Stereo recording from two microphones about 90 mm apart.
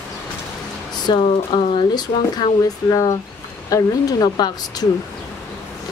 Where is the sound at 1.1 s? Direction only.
55° left (ahead or behind).